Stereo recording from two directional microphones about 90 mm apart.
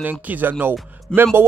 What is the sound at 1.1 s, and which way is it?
Speech, 10° left (ahead or behind).